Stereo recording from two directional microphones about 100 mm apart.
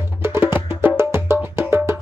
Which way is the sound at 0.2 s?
25° right (ahead or behind).